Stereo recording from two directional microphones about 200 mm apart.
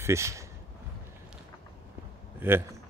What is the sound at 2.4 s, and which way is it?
Speech, 10° right (ahead or behind).